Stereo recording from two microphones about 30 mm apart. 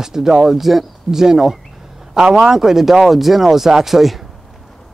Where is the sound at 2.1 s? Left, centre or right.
Right.